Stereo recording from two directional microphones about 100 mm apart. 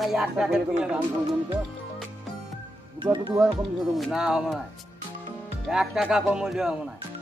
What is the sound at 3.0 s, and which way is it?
Speech, 55° right (ahead or behind).